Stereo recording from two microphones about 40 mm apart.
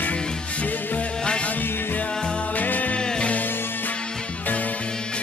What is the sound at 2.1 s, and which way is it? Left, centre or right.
Music, left.